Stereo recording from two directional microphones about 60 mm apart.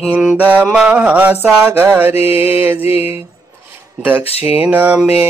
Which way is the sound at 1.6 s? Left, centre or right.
Right.